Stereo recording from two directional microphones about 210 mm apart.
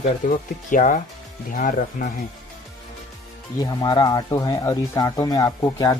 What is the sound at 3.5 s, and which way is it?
Speech, 20° left (ahead or behind).